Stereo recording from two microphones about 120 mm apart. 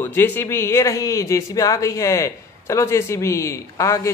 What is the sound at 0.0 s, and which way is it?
Speech, 20° left (ahead or behind).